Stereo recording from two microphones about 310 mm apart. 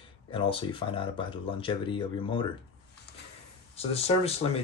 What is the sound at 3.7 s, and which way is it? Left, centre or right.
Speech, centre.